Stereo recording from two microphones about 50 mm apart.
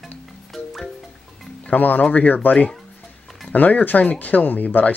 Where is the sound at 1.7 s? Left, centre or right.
Left.